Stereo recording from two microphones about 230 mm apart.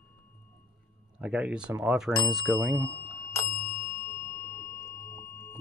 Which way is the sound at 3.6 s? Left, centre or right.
Right.